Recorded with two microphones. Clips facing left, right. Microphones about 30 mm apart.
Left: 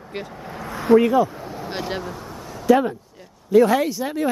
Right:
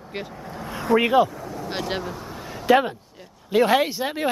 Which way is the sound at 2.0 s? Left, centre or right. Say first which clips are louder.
Even; centre.